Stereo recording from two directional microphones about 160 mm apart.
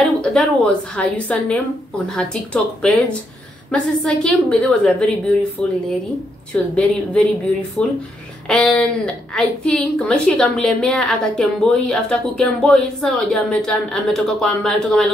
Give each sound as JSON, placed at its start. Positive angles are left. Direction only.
{"t": 0.2, "sound": "a woman's voice", "side_deg": 5}
{"t": 8.5, "sound": "a woman's voice", "side_deg": 5}